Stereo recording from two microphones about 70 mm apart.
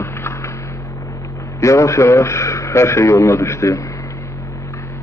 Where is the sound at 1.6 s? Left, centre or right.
Left.